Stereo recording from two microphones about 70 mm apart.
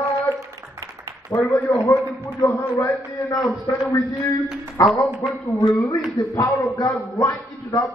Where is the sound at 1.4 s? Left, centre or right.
Left.